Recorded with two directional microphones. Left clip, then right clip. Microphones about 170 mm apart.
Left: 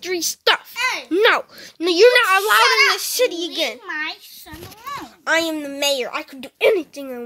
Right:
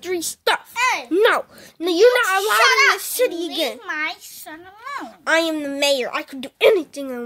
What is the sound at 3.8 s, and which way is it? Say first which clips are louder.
A child's voice: right 1 dB; 45° right (ahead or behind).